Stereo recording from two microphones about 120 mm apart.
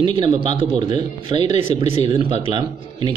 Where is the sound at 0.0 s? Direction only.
45° right (ahead or behind).